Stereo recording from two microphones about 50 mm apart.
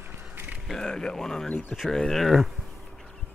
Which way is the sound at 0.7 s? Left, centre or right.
Centre.